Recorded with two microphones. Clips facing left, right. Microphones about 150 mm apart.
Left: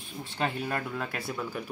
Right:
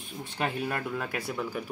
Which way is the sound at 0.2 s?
10° right (ahead or behind).